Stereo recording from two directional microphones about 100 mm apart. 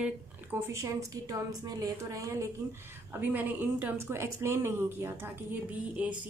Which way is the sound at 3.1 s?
15° right (ahead or behind).